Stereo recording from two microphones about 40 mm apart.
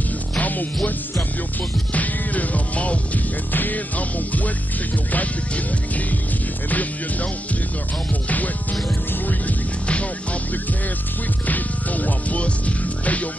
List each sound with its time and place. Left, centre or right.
0.4 s music: left
2.0 s music: left
3.5 s music: left
6.7 s music: left
8.3 s speech: left
11.4 s music: left